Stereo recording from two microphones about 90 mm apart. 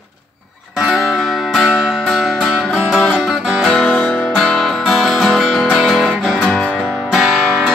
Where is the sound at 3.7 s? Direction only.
10° left (ahead or behind).